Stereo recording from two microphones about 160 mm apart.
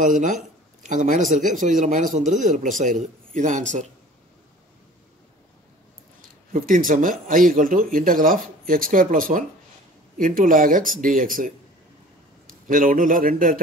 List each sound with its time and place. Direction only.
0.0 s a man's voice: 55° right (ahead or behind)
6.2 s a man's voice: 60° right (ahead or behind)